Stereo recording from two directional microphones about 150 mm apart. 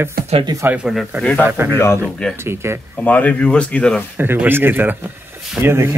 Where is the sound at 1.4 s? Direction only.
15° right (ahead or behind).